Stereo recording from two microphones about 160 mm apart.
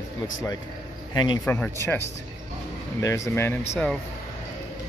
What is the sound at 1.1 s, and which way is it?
Speech, 25° left (ahead or behind).